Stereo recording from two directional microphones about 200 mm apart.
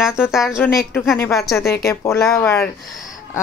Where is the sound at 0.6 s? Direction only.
10° left (ahead or behind).